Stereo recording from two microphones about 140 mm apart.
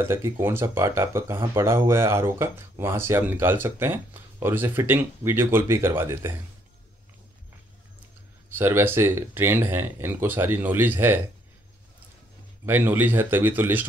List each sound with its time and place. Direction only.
0.0 s speech: 15° right (ahead or behind)
8.5 s speech: 15° right (ahead or behind)
12.6 s speech: 15° right (ahead or behind)